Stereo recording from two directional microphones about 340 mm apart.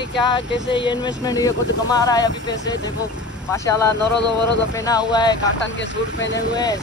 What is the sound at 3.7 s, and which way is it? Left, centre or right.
Speech, left.